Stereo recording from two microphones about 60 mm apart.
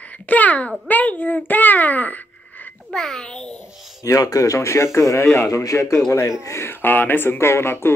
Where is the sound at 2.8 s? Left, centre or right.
Centre.